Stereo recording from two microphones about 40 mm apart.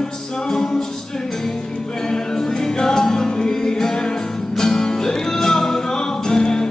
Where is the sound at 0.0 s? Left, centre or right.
Centre.